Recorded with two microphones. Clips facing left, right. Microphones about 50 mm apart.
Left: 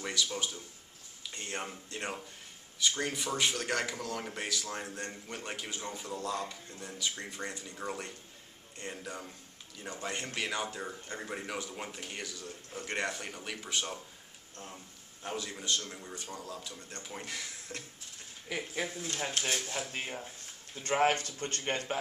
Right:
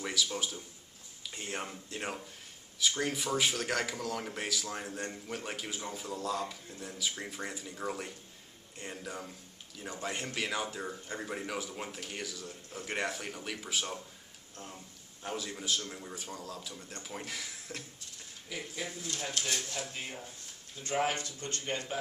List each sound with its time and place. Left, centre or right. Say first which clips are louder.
0.0 s speech: even; centre
19.0 s speech: left 2 dB; left
20.8 s speech: left 4 dB; left